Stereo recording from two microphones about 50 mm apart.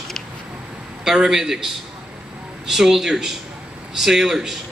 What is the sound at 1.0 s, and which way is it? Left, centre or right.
A man's voice, centre.